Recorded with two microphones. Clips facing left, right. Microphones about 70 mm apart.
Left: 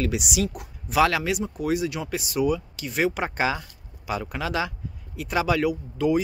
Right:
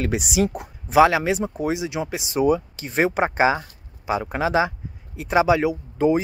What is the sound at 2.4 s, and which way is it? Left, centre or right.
Speech, right.